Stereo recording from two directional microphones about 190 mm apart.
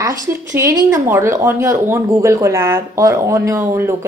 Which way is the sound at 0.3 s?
15° right (ahead or behind).